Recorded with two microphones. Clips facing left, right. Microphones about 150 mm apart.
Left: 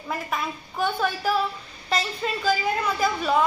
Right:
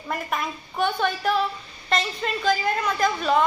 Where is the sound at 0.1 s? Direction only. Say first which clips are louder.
Right 1 dB; centre (ahead or behind).